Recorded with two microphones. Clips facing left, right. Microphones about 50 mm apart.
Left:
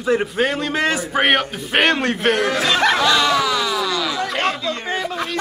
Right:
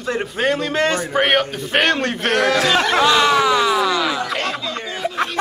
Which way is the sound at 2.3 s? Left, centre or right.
Right.